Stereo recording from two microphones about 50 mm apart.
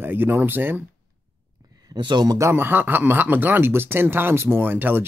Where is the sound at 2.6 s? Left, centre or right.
Right.